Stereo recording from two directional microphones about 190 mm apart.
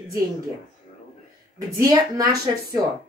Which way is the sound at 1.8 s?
20° right (ahead or behind).